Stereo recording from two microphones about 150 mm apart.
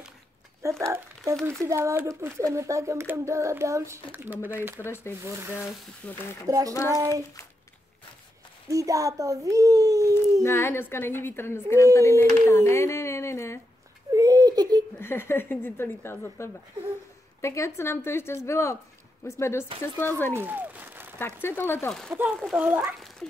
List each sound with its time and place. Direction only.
0.6 s speech: 20° right (ahead or behind)
4.7 s a woman's voice: 15° left (ahead or behind)
6.4 s speech: 25° right (ahead or behind)
6.7 s a woman's voice: 20° left (ahead or behind)
7.0 s speech: 20° right (ahead or behind)
8.6 s speech: 20° right (ahead or behind)
10.4 s a woman's voice: 15° left (ahead or behind)
14.1 s a sound: 25° right (ahead or behind)
15.0 s a woman's voice: 15° left (ahead or behind)
20.3 s applause: 10° right (ahead or behind)
21.4 s a woman's voice: 15° left (ahead or behind)
22.2 s speech: 15° right (ahead or behind)